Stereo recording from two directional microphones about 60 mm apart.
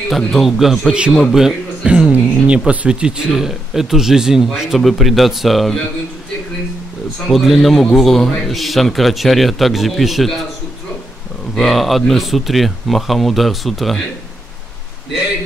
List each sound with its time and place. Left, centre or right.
0.3 s speech: centre
1.9 s speech: centre
7.2 s speech: centre
11.5 s speech: centre